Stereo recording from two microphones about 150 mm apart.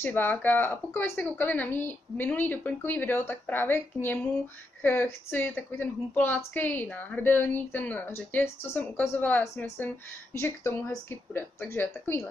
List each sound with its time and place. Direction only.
0.0 s a woman's voice: 15° left (ahead or behind)